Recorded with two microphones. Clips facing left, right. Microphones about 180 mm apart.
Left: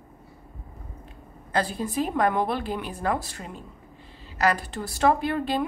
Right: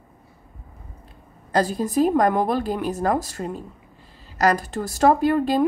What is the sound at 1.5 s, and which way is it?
A woman's voice, 40° right (ahead or behind).